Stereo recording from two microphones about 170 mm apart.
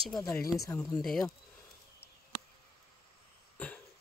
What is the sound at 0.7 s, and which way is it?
Speech, centre (ahead or behind).